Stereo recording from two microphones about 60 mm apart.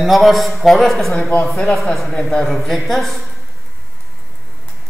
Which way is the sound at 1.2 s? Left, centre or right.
Left.